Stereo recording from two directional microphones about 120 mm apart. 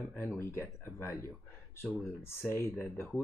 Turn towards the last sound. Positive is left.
turn(degrees=10)  # may be behind; listen again after turning